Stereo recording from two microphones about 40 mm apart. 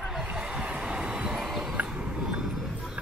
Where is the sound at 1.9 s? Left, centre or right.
Right.